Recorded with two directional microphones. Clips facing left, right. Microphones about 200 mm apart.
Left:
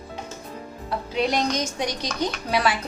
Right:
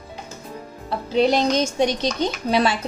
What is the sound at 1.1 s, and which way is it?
A woman's voice, 30° right (ahead or behind).